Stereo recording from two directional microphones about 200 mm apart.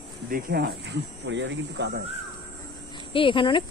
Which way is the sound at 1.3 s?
60° right (ahead or behind).